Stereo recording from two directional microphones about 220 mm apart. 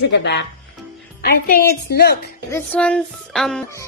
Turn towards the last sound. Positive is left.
turn(degrees=0)  # may be behind; listen again after turning